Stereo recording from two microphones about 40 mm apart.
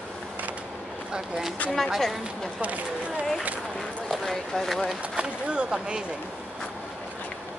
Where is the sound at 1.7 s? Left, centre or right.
Centre.